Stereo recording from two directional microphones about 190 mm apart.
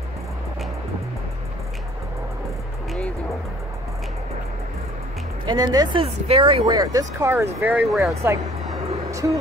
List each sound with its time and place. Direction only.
5.4 s speech: 20° right (ahead or behind); by 8.1 s 5° right (ahead or behind)
8.1 s speech: 15° right (ahead or behind)